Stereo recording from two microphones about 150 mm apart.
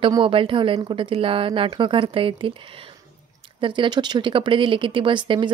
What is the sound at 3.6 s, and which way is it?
Speech, 30° right (ahead or behind).